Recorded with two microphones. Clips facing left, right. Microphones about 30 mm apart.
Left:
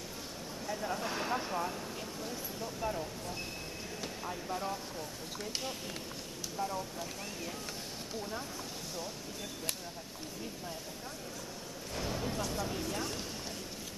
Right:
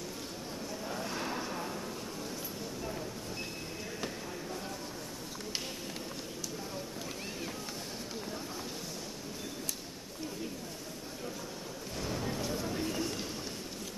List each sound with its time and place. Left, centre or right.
1.0 s vehicle: centre
4.5 s vehicle: centre
12.0 s a sound: centre